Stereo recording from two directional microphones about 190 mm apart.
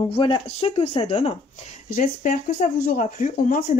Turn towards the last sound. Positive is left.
turn(degrees=45)  # may be behind; listen again after turning